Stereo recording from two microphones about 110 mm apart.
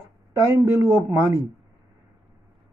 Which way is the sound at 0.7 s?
20° right (ahead or behind).